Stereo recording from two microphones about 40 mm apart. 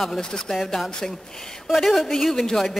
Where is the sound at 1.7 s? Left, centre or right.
Centre.